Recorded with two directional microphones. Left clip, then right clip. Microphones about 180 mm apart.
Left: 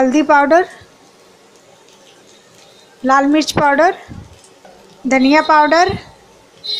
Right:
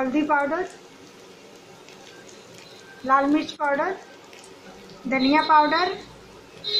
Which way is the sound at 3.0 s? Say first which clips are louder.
Left 8 dB; 55° left (ahead or behind).